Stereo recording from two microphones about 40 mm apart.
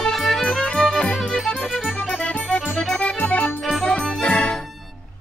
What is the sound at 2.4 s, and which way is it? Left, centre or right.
Music, left.